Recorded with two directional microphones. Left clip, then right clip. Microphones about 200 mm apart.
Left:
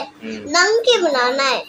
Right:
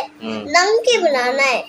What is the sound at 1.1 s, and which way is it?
Child singing, 20° right (ahead or behind).